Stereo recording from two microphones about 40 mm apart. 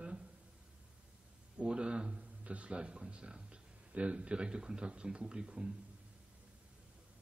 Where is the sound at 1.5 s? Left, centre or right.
Right.